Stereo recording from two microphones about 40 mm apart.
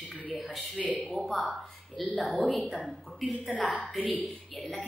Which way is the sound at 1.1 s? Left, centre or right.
Centre.